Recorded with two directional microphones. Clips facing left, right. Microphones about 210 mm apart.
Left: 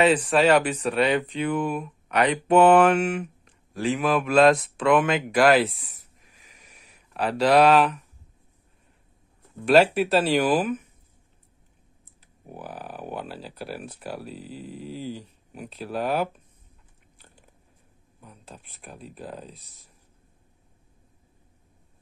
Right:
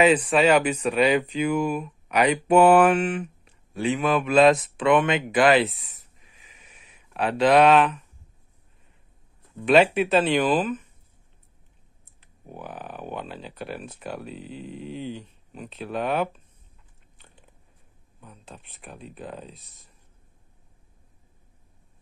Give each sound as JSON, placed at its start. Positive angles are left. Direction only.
{"t": 0.0, "sound": "speech", "side_deg": -5}
{"t": 7.4, "sound": "speech", "side_deg": 5}
{"t": 9.9, "sound": "speech", "side_deg": 0}
{"t": 12.4, "sound": "speech", "side_deg": 0}
{"t": 18.2, "sound": "speech", "side_deg": 0}